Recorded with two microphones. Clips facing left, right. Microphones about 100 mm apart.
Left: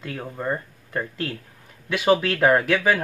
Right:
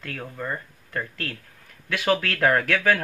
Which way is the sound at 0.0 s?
20° left (ahead or behind).